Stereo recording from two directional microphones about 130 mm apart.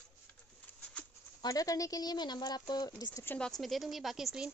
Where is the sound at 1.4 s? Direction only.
25° left (ahead or behind).